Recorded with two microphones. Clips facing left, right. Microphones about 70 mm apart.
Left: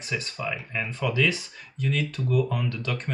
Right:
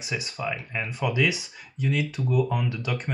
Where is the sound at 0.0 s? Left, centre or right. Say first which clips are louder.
Even; centre.